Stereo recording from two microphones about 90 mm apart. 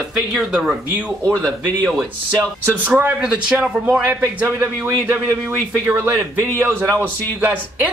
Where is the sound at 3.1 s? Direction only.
10° right (ahead or behind).